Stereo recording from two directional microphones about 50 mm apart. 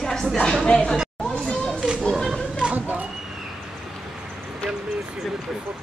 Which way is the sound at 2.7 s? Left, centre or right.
Right.